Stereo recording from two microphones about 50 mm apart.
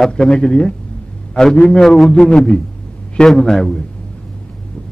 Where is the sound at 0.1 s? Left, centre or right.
Centre.